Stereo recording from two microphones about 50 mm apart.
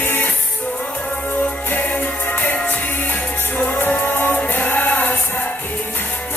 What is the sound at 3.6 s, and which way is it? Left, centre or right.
Music, left.